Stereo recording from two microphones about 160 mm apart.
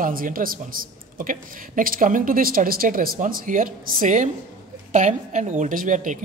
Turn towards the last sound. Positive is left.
turn(degrees=-55)  # may be behind; listen again after turning